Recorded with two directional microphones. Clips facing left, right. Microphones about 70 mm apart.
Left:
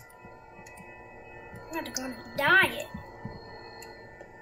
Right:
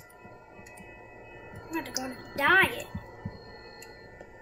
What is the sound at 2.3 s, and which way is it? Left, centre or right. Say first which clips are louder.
Speech: even; centre.